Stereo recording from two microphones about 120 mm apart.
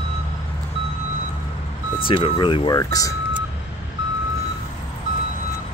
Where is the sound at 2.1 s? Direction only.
45° left (ahead or behind).